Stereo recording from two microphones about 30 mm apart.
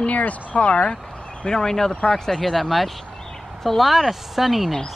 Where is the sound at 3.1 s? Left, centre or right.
Centre.